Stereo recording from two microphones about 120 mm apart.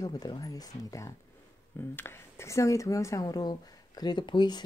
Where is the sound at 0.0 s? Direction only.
30° left (ahead or behind).